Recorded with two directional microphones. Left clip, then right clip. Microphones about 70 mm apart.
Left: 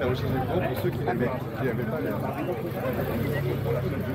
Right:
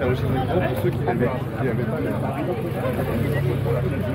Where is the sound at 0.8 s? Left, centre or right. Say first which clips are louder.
Right 4 dB; left.